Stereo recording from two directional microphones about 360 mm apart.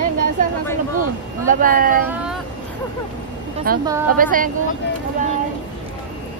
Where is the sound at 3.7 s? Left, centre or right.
Right.